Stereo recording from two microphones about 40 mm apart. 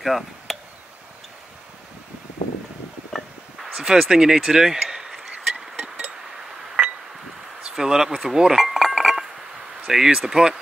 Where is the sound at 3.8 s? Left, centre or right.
Centre.